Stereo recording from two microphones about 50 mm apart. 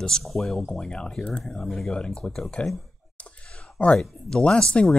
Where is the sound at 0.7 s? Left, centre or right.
Centre.